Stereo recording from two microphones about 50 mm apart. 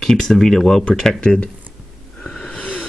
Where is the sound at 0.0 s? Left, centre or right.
Centre.